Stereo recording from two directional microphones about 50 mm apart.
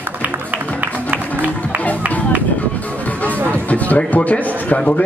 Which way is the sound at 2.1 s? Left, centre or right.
Left.